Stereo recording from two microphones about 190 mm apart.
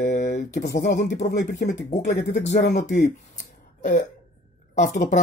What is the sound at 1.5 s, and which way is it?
Speech, 40° left (ahead or behind).